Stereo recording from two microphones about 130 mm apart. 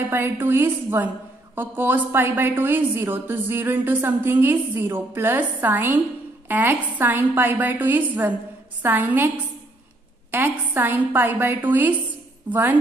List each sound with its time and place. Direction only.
0.1 s a woman's voice: 15° right (ahead or behind)
10.3 s a woman's voice: 15° right (ahead or behind)